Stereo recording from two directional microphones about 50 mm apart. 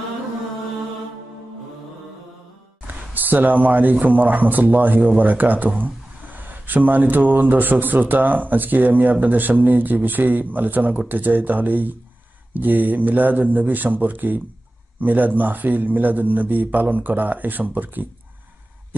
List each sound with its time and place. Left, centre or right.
2.9 s speech: right